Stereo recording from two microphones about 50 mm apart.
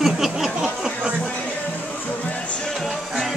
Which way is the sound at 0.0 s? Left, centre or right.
Centre.